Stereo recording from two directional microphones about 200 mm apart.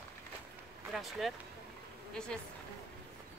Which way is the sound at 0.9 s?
Centre (ahead or behind).